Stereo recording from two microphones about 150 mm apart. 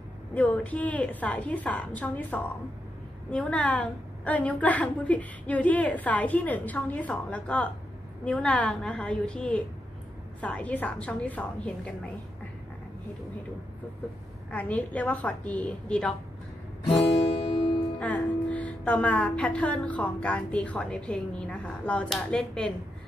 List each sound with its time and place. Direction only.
0.3 s speech: 10° left (ahead or behind)
14.5 s speech: 10° left (ahead or behind)
16.9 s music: 40° left (ahead or behind)
17.9 s speech: 10° left (ahead or behind)